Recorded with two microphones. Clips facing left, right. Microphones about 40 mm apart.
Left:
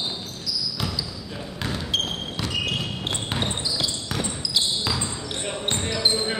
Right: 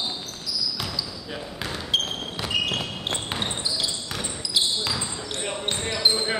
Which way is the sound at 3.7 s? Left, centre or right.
Centre.